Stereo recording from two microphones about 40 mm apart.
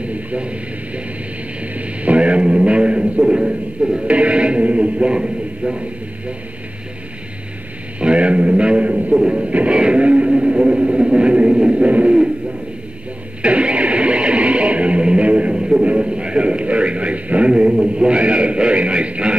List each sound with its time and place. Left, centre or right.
0.0 s speech: right
8.0 s a man's voice: right
9.1 s music: right
9.8 s a man's voice: right
13.4 s music: right
15.5 s music: centre
15.8 s a man's voice: right